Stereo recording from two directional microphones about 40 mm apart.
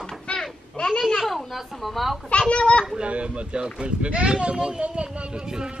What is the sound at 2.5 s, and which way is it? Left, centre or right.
Speech, left.